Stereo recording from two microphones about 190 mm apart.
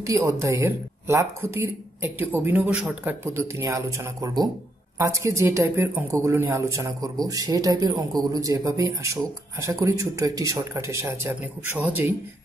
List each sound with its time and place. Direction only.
0.0 s a man's voice: 15° right (ahead or behind)